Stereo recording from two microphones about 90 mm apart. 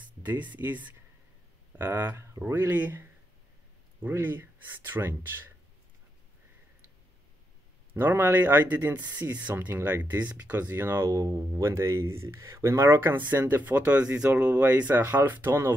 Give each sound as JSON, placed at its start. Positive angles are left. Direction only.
{"t": 0.0, "sound": "speech", "side_deg": -20}
{"t": 7.9, "sound": "speech", "side_deg": -25}
{"t": 11.1, "sound": "speech", "side_deg": -35}